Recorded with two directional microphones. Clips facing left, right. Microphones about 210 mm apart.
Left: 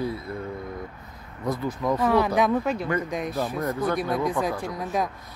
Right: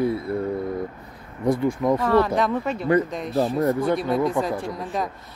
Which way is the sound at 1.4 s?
25° right (ahead or behind).